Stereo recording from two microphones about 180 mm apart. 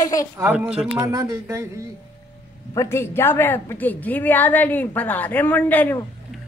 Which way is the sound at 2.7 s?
15° left (ahead or behind).